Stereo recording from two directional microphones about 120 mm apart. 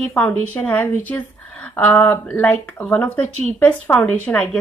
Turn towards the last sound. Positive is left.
turn(degrees=10)  # may be behind; listen again after turning